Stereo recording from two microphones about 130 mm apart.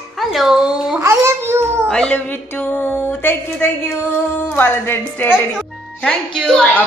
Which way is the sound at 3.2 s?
15° left (ahead or behind).